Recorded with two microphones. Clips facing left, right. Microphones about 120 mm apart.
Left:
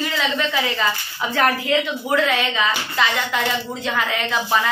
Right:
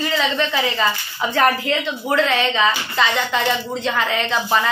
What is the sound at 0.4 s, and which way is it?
A woman's voice, centre (ahead or behind).